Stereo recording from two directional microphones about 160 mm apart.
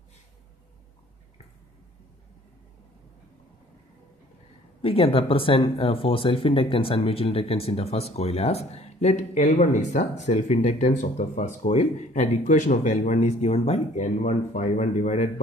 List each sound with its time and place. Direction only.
4.8 s speech: 35° left (ahead or behind)